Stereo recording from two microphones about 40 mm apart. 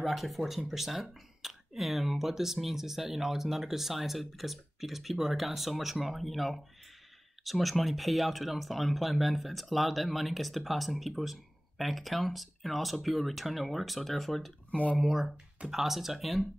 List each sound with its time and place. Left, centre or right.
0.0 s speech: centre
14.7 s speech: left
15.0 s speech: centre